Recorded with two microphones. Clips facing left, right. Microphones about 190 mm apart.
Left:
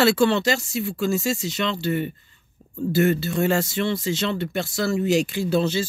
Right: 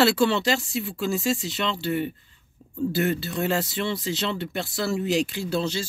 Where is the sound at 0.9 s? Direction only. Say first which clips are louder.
Left 4 dB; 45° left (ahead or behind).